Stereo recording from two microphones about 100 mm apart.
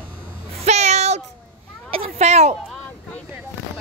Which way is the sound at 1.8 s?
70° right (ahead or behind).